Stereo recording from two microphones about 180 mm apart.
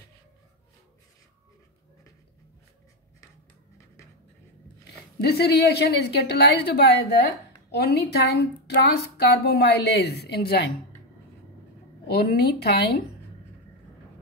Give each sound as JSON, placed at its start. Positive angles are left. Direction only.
{"t": 5.2, "sound": "a woman's voice", "side_deg": 60}
{"t": 12.1, "sound": "a woman's voice", "side_deg": 60}